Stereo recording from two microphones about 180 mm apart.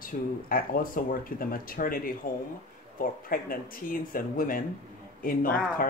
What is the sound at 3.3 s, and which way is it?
Speech, 50° left (ahead or behind).